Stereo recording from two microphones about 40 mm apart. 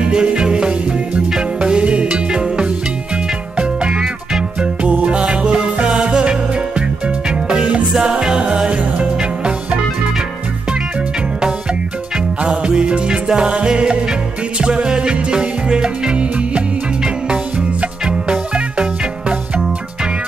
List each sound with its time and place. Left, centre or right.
0.0 s music: right
5.0 s music: right
12.6 s music: right